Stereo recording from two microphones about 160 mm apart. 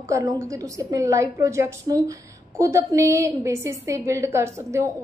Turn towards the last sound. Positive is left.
turn(degrees=-15)  # may be behind; listen again after turning